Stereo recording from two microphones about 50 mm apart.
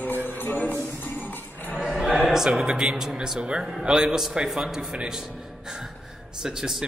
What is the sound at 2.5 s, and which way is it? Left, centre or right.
A man's voice, centre.